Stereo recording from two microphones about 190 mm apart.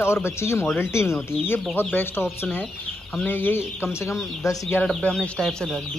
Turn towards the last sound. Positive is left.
turn(degrees=5)  # may be behind; listen again after turning